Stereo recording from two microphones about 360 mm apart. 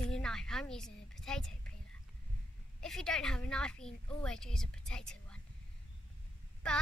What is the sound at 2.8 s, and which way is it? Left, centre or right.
A woman's voice, centre.